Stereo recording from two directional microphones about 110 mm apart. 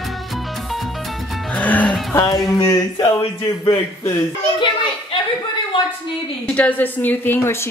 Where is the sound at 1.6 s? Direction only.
15° left (ahead or behind).